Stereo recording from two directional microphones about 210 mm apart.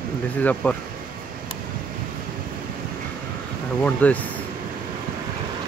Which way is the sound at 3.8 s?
5° left (ahead or behind).